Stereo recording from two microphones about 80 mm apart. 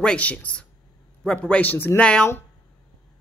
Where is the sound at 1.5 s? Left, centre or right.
Left.